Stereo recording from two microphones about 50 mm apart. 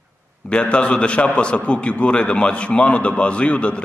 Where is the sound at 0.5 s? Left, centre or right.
Left.